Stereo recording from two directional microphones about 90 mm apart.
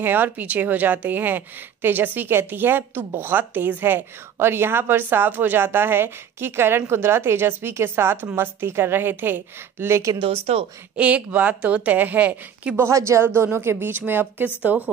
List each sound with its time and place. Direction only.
0.0 s a woman's voice: 20° right (ahead or behind)
10.2 s speech: 90° right
11.0 s a woman's voice: 15° right (ahead or behind)
12.9 s a woman's voice: 35° right (ahead or behind); by 14.9 s 20° right (ahead or behind)